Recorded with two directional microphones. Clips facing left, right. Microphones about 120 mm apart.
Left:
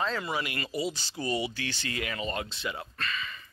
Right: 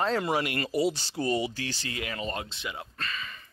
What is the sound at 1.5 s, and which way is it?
Speech, 35° right (ahead or behind).